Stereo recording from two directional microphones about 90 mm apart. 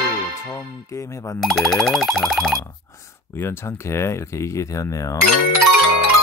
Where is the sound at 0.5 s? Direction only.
35° left (ahead or behind).